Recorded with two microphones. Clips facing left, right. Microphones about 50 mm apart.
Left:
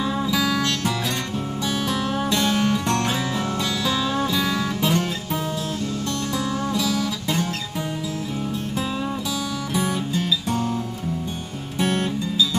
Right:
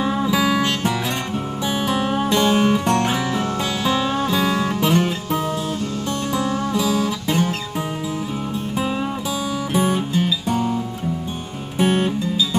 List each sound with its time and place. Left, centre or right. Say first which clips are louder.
0.0 s music: right 3 dB; right
9.8 s music: right 5 dB; right
11.8 s music: right 4 dB; right